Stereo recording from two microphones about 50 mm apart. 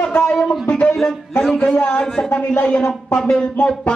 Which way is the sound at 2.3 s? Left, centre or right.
Left.